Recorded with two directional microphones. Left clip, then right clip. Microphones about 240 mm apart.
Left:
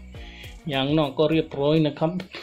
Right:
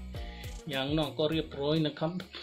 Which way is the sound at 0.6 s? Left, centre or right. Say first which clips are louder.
Left 9 dB; left.